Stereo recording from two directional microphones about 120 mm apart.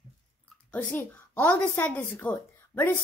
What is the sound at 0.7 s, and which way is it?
A woman's voice, 15° left (ahead or behind).